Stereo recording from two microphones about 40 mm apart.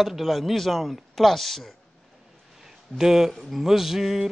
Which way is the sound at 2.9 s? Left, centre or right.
Centre.